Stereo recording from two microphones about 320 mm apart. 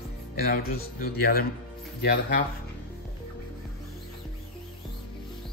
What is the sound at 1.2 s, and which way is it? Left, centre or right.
Speech, left.